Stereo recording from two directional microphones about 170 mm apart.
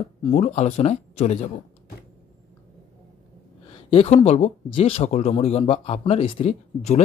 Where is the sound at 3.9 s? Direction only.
35° left (ahead or behind).